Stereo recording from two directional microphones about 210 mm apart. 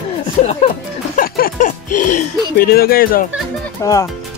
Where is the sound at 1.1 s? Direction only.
45° left (ahead or behind).